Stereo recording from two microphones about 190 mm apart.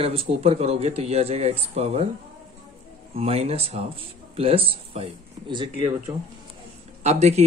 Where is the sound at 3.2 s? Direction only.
30° right (ahead or behind).